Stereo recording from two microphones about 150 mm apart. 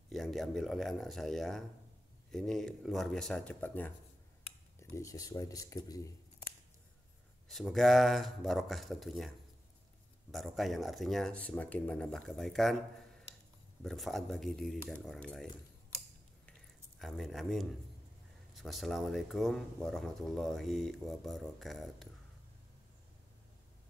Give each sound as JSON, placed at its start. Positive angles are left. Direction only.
{"t": 0.1, "sound": "speech", "side_deg": 0}
{"t": 7.4, "sound": "speech", "side_deg": 0}
{"t": 10.3, "sound": "speech", "side_deg": 0}
{"t": 13.8, "sound": "speech", "side_deg": 0}
{"t": 17.0, "sound": "speech", "side_deg": 0}